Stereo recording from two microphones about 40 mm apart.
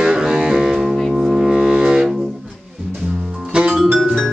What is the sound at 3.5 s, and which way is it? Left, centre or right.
Music, right.